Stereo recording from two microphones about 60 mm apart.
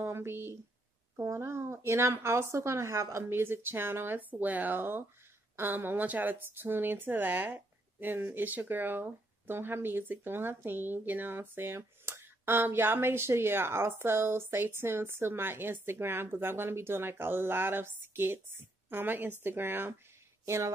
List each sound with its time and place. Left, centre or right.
0.0 s speech: right
1.1 s speech: right
3.3 s a woman's voice: right
20.4 s a woman's voice: right